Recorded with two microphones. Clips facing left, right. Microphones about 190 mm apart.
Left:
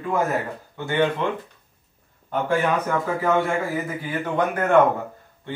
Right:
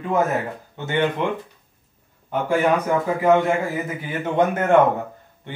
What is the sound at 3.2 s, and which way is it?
A man's voice, 20° right (ahead or behind).